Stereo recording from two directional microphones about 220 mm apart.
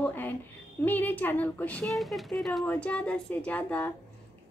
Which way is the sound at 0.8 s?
10° left (ahead or behind).